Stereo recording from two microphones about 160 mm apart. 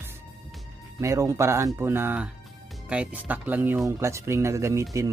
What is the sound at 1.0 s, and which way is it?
Speech, 20° right (ahead or behind).